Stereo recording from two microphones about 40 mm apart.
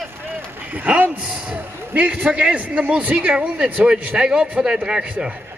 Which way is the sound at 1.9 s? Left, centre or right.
Right.